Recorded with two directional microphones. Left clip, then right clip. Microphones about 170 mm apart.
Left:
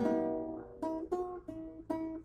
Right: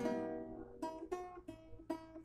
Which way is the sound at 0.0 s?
15° right (ahead or behind).